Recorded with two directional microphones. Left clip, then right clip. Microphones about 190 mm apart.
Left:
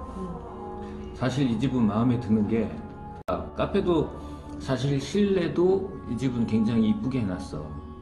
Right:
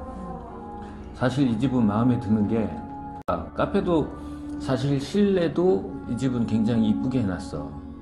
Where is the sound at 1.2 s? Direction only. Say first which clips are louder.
Right 3 dB; 25° right (ahead or behind).